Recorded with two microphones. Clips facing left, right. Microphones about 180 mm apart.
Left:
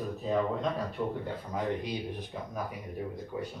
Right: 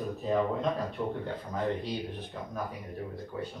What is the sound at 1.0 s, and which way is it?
Speech, 10° left (ahead or behind).